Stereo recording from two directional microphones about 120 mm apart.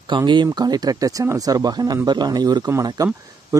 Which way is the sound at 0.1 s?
40° right (ahead or behind).